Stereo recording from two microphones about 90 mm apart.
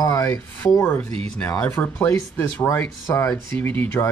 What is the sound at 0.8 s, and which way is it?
Speech, 25° left (ahead or behind).